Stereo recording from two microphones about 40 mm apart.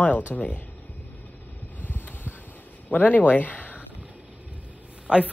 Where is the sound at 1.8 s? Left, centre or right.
Left.